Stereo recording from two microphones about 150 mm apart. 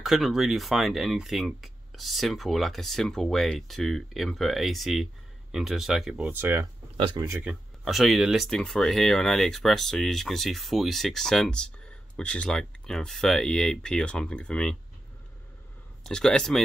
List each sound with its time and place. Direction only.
0.0 s speech: centre (ahead or behind)
6.3 s speech: 15° right (ahead or behind)
7.4 s speech: centre (ahead or behind)
16.0 s speech: 5° left (ahead or behind)